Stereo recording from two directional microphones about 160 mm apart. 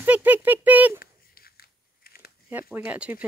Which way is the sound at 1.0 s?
70° left (ahead or behind).